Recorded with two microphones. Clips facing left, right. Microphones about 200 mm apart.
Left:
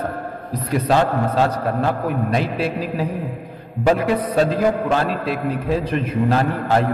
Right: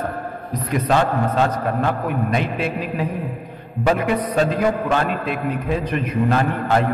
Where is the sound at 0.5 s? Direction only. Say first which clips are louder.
Left 1 dB; 35° left (ahead or behind).